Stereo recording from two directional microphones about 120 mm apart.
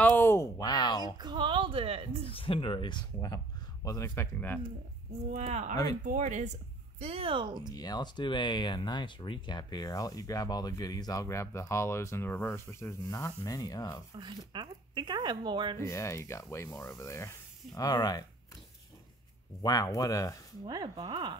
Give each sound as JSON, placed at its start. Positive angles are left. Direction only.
{"t": 0.0, "sound": "a sound", "side_deg": 15}
{"t": 0.6, "sound": "a sound", "side_deg": 35}
{"t": 1.0, "sound": "speech", "side_deg": -35}
{"t": 2.3, "sound": "speech", "side_deg": 45}
{"t": 5.3, "sound": "speech", "side_deg": -70}
{"t": 6.1, "sound": "speech", "side_deg": -90}
{"t": 7.7, "sound": "speech", "side_deg": 35}
{"t": 14.1, "sound": "speech", "side_deg": -40}
{"t": 15.8, "sound": "speech", "side_deg": 25}
{"t": 19.6, "sound": "speech", "side_deg": 30}
{"t": 20.6, "sound": "speech", "side_deg": -35}